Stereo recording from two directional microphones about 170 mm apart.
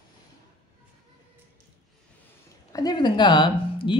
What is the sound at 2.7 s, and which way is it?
Speech, 25° left (ahead or behind).